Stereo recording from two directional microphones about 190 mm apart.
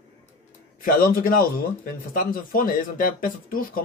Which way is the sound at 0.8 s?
50° left (ahead or behind).